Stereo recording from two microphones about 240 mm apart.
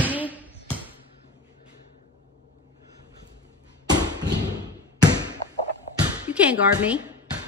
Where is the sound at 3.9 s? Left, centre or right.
Centre.